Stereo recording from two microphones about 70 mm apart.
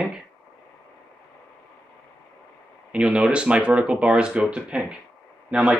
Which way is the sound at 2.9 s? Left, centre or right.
Centre.